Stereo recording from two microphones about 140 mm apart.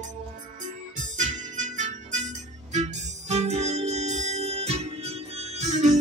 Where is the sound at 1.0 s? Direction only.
65° right (ahead or behind).